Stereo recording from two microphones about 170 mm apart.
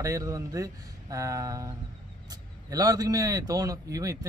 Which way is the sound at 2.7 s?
20° right (ahead or behind).